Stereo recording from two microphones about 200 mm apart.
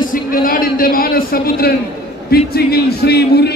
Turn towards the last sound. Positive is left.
turn(degrees=55)  # may be behind; listen again after turning